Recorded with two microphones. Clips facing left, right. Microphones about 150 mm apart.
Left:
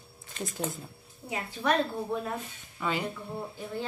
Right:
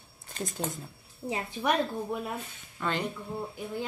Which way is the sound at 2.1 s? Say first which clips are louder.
Left 1 dB; 15° right (ahead or behind).